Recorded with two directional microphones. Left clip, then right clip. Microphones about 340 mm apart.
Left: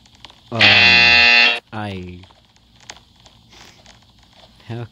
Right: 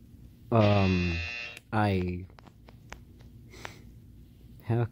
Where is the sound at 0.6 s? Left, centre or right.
Left.